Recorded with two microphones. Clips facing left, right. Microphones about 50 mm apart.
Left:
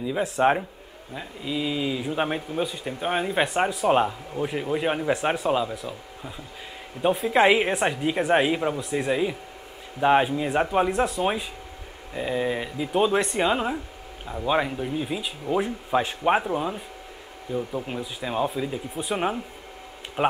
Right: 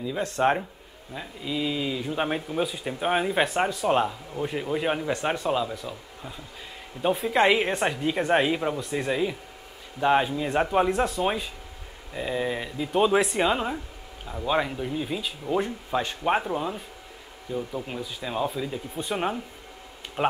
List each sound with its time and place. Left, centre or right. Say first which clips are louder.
0.0 s a man's voice: left 2 dB; centre